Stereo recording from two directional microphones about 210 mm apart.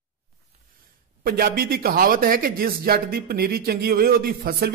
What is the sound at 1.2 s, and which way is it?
Speech, 45° right (ahead or behind).